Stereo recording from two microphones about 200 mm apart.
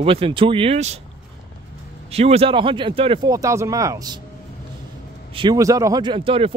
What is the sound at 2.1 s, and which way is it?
A man's voice, 30° right (ahead or behind).